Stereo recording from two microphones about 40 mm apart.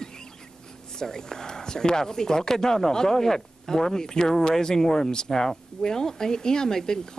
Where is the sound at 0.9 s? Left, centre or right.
Centre.